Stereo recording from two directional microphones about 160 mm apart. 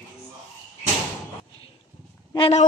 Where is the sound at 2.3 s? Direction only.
35° left (ahead or behind).